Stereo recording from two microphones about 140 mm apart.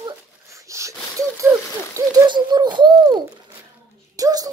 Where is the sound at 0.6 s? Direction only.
20° right (ahead or behind).